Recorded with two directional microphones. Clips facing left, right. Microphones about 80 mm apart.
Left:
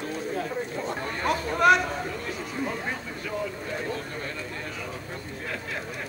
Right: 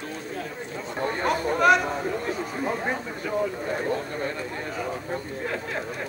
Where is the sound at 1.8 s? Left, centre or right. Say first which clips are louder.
Right 4 dB; right.